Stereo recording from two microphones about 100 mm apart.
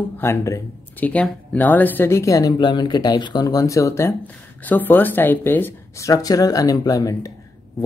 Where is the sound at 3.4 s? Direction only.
35° left (ahead or behind).